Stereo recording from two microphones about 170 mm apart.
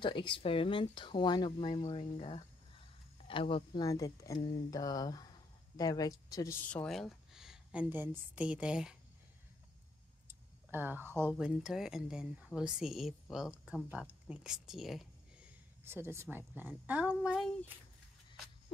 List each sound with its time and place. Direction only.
0.0 s speech: 30° left (ahead or behind); by 8.9 s 5° right (ahead or behind)
10.2 s a sound: 10° right (ahead or behind)
11.3 s speech: 5° right (ahead or behind)
15.8 s a woman's voice: 15° right (ahead or behind)